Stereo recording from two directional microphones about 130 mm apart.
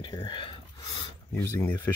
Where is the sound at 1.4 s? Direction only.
15° left (ahead or behind).